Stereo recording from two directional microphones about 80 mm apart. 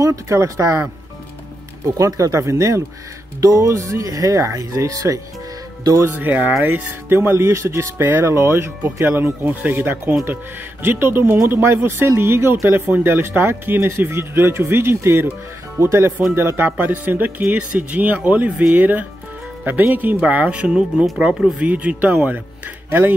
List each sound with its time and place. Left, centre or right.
0.0 s speech: right
2.0 s speech: right
6.1 s speech: right